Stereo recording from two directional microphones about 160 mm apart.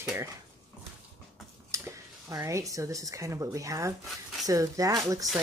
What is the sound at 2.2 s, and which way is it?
Speech, 20° right (ahead or behind).